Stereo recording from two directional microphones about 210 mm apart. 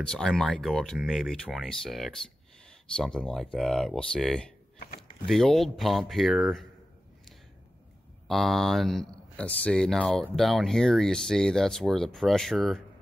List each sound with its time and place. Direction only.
0.0 s speech: 5° left (ahead or behind)
8.3 s speech: centre (ahead or behind)